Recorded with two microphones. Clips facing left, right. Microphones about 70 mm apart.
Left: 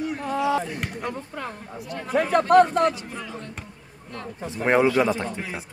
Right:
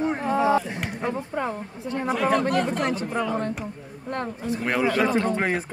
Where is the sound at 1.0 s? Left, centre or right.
Centre.